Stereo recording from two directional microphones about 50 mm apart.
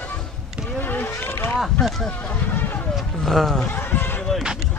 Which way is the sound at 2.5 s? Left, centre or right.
Left.